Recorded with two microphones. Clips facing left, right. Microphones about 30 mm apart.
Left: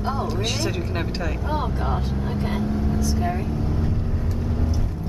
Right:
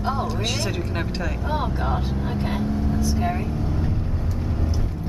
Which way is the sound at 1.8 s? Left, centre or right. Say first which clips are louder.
Right 1 dB; centre.